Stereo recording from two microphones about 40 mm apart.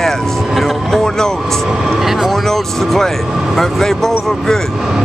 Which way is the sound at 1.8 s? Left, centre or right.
Centre.